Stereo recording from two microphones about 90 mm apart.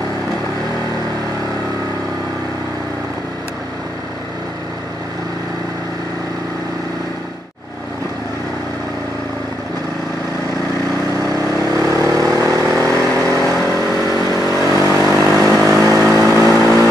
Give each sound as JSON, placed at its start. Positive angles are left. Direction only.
{"t": 11.1, "sound": "vehicle", "side_deg": -40}